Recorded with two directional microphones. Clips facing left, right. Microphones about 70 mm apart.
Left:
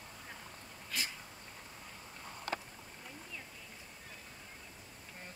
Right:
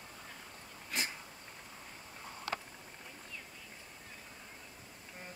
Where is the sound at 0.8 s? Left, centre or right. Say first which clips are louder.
Right 2 dB; right.